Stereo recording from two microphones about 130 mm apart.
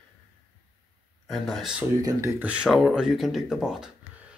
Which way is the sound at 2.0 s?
25° right (ahead or behind).